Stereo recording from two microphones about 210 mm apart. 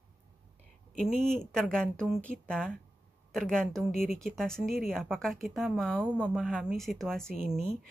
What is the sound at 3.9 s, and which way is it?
Speech, 35° left (ahead or behind).